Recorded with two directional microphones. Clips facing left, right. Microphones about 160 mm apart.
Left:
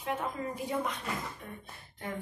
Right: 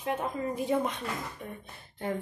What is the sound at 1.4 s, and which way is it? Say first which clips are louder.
Speech: right 4 dB; 25° right (ahead or behind).